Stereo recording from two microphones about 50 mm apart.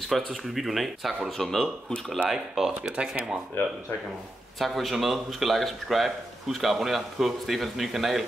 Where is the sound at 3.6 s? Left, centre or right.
Left.